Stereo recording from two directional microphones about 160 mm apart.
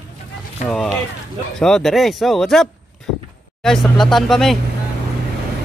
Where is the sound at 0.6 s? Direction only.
50° left (ahead or behind).